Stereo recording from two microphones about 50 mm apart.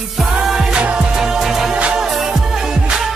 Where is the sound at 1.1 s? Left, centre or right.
Centre.